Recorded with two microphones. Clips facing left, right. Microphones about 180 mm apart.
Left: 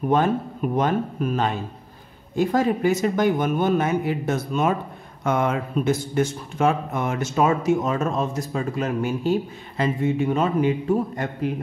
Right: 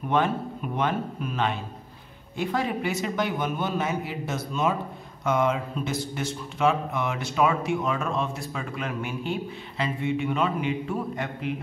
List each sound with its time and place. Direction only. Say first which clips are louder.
0.1 s speech: left 3 dB; 40° left (ahead or behind)